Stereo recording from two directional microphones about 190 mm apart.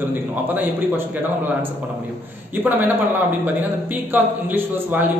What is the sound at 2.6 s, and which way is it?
A man's voice, 10° right (ahead or behind).